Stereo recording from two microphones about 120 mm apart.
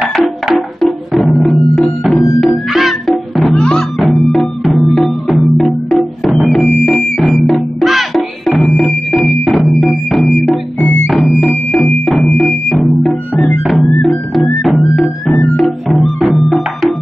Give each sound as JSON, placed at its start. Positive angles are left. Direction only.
{"t": 0.0, "sound": "music", "side_deg": -5}
{"t": 10.8, "sound": "music", "side_deg": 15}
{"t": 11.1, "sound": "music", "side_deg": 0}